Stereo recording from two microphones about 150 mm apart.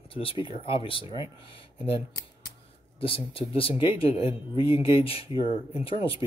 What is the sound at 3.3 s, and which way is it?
Speech, 35° left (ahead or behind).